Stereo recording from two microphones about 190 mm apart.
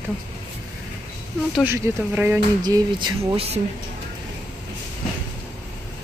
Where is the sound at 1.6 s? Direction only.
10° right (ahead or behind).